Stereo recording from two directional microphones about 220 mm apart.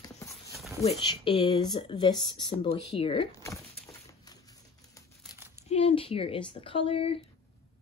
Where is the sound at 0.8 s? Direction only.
25° left (ahead or behind).